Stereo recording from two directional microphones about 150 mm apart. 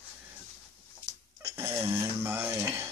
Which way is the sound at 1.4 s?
15° right (ahead or behind).